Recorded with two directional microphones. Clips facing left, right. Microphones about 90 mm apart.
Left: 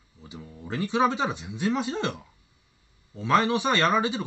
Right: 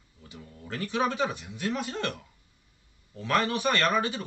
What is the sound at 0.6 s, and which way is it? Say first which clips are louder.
Speech: left 5 dB; 20° left (ahead or behind).